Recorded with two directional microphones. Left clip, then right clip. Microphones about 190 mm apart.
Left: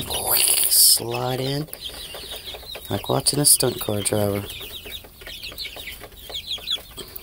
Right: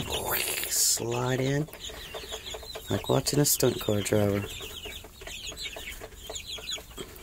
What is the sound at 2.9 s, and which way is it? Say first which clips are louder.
Speech: left 4 dB; 15° right (ahead or behind).